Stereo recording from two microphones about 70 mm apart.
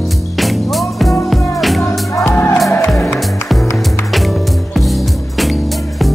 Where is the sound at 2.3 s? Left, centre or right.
Left.